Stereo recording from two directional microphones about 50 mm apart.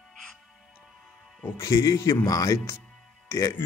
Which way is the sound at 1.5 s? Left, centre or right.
Left.